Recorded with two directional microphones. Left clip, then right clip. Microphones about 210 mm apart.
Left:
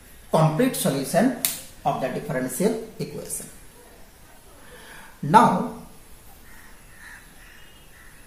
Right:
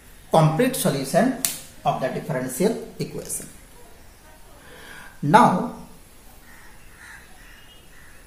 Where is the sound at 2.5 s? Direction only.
30° right (ahead or behind).